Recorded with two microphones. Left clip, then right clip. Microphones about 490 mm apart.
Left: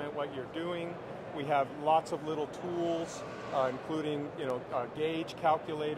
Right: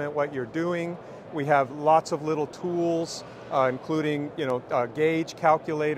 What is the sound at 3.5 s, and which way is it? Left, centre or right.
Speech, right.